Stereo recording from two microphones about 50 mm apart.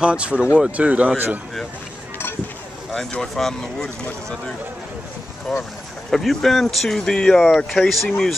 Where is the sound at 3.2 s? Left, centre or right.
Centre.